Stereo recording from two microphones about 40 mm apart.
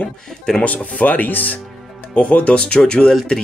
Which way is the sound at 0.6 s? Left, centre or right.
Left.